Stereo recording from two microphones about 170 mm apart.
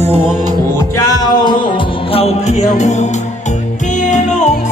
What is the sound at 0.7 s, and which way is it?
Music, 20° left (ahead or behind).